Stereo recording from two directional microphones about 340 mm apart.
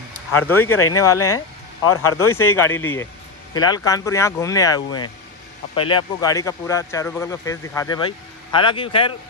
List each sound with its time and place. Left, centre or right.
0.5 s speech: centre
0.7 s speech: left
2.3 s speech: centre